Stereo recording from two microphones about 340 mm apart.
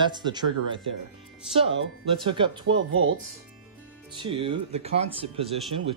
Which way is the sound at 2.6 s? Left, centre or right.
Right.